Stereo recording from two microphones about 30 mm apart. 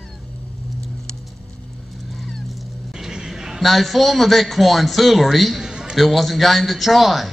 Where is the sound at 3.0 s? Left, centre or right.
Centre.